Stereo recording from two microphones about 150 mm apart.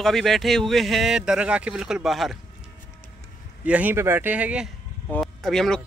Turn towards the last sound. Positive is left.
turn(degrees=5)  # may be behind; listen again after turning